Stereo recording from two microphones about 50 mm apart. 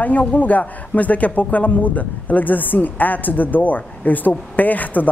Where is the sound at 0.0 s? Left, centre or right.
Left.